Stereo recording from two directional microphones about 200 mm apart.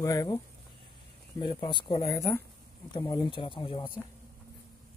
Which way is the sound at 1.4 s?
25° left (ahead or behind).